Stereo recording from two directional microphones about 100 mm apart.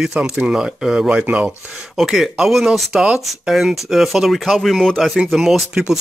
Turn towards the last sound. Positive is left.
turn(degrees=-5)  # may be behind; listen again after turning